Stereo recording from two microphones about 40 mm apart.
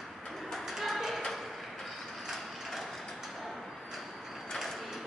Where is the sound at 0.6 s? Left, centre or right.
Centre.